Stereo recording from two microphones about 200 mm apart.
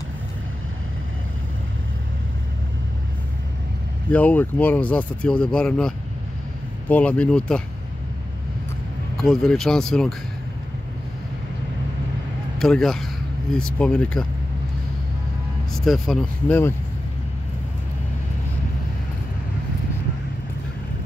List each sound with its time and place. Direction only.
4.1 s speech: 10° left (ahead or behind)
9.1 s speech: centre (ahead or behind)
12.5 s speech: centre (ahead or behind)
15.8 s speech: centre (ahead or behind)